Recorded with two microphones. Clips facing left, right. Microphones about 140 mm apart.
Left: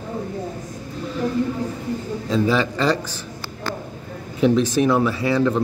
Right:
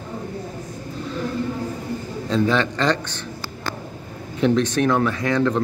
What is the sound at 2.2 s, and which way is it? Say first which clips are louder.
Speech: even; 5° left (ahead or behind).